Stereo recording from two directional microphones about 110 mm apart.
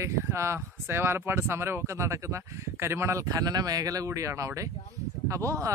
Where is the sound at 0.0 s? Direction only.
25° right (ahead or behind).